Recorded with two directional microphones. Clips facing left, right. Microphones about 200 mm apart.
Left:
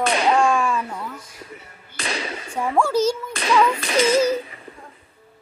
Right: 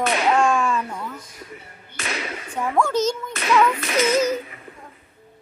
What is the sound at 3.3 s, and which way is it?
Whip, 30° left (ahead or behind).